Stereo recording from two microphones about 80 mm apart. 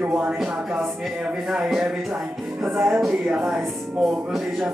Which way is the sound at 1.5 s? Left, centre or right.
Centre.